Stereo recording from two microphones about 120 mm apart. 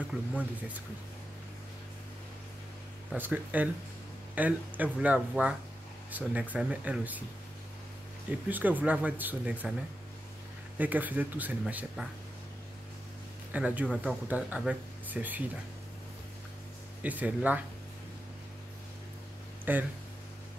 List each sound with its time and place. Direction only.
0.1 s speech: 5° right (ahead or behind)
3.2 s speech: 15° right (ahead or behind)
8.3 s speech: 15° right (ahead or behind)
10.8 s speech: 15° right (ahead or behind)
13.5 s speech: 10° right (ahead or behind)
17.0 s speech: 15° right (ahead or behind)
19.6 s speech: 15° right (ahead or behind)